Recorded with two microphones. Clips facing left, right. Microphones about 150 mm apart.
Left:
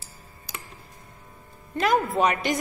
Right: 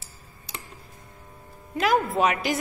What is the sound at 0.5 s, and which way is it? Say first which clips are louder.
Music: even; 25° right (ahead or behind).